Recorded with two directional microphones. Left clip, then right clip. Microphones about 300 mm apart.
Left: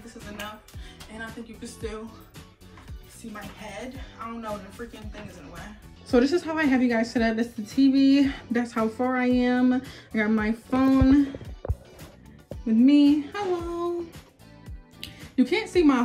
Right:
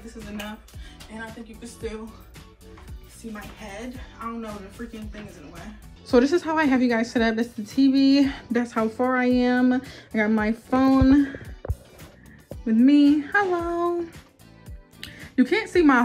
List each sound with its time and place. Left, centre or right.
1.2 s a woman's voice: centre
6.0 s a woman's voice: centre
15.0 s music: centre